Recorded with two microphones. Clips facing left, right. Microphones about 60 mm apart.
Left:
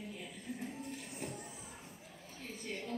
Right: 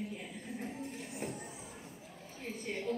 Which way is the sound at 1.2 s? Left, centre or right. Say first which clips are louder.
Right 3 dB; right.